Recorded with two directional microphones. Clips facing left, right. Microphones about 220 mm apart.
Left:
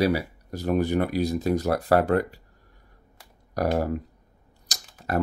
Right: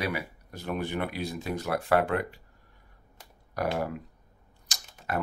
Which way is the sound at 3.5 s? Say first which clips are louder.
Left 5 dB; 40° left (ahead or behind).